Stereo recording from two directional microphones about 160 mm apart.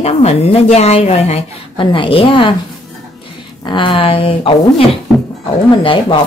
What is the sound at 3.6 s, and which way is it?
A woman's voice, 30° left (ahead or behind).